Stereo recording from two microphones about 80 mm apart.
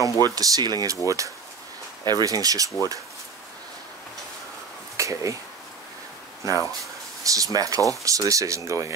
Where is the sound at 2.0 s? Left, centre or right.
Right.